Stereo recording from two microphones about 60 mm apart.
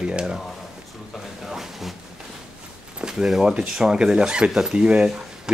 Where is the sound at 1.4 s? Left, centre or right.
Centre.